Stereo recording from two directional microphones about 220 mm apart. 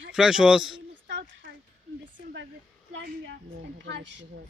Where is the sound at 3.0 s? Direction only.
55° right (ahead or behind).